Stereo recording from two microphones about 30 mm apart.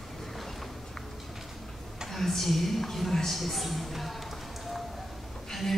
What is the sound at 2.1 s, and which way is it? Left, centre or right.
A woman's voice, centre.